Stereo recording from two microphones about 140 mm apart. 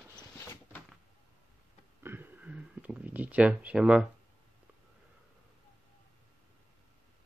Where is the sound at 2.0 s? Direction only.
15° right (ahead or behind).